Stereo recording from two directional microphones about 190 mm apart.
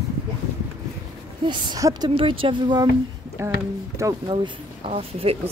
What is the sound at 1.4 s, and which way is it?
Speech, 25° right (ahead or behind).